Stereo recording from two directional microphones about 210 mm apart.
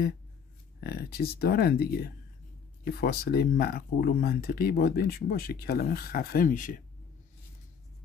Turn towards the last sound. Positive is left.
turn(degrees=40)  # may be behind; listen again after turning